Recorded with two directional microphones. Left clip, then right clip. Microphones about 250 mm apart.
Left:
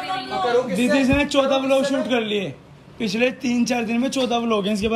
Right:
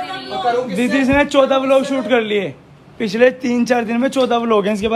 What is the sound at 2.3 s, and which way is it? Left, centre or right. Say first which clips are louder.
A man's voice: right 6 dB; centre.